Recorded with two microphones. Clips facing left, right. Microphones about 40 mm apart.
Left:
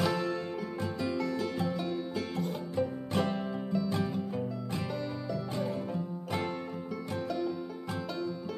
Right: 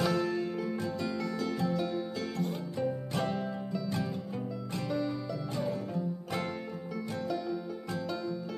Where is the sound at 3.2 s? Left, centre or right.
Centre.